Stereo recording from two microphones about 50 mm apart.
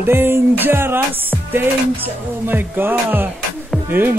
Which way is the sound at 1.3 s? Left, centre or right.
Right.